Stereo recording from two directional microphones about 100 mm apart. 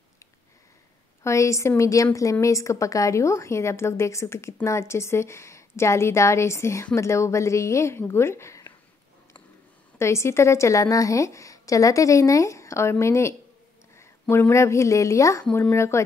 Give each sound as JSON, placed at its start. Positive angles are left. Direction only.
{"t": 1.2, "sound": "a woman's voice", "side_deg": 30}
{"t": 9.9, "sound": "a woman's voice", "side_deg": 30}